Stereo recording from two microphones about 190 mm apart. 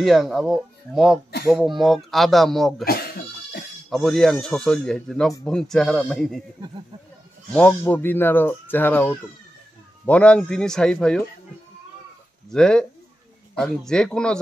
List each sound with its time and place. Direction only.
0.0 s speech: centre (ahead or behind)
2.8 s speech: 55° left (ahead or behind)
3.9 s speech: centre (ahead or behind)
7.5 s speech: 10° left (ahead or behind)
12.4 s speech: 5° left (ahead or behind)